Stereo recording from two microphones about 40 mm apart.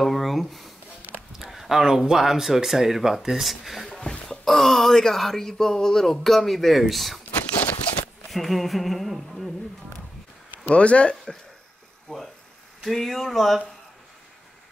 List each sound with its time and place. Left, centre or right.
0.0 s a sound: centre
1.5 s speech: centre
8.3 s speech: centre
10.7 s speech: left
12.1 s a sound: centre
12.8 s speech: centre